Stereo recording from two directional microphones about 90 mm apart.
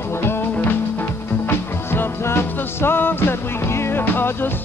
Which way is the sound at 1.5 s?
25° left (ahead or behind).